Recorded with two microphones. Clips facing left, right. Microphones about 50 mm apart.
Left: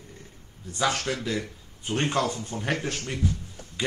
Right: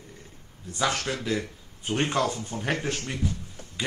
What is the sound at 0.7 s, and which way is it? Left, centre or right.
Speech, centre.